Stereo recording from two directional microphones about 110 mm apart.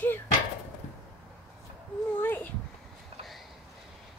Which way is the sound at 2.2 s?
20° left (ahead or behind).